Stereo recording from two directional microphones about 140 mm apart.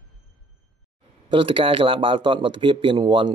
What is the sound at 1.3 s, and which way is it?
Speech, 40° right (ahead or behind).